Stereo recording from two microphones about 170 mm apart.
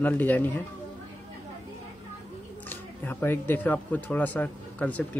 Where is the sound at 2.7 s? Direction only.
10° left (ahead or behind).